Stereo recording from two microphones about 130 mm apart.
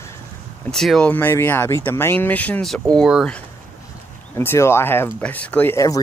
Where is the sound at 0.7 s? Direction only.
5° left (ahead or behind).